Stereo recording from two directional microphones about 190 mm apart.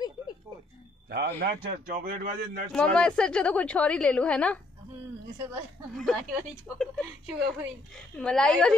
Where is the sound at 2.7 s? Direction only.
5° left (ahead or behind).